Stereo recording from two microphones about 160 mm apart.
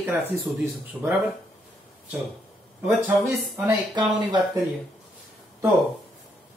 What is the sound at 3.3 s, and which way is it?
Speech, 15° right (ahead or behind).